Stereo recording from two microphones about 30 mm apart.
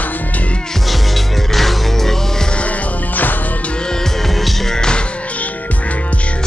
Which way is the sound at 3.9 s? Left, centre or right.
Centre.